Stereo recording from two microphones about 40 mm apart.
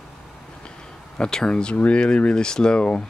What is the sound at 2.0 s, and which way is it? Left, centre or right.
Speech, left.